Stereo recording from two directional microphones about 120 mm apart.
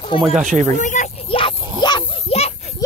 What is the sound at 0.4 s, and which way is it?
Speech, 90° right.